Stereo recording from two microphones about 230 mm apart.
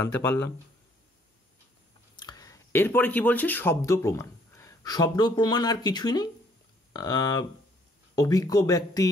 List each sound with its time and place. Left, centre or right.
0.0 s speech: centre
2.1 s speech: centre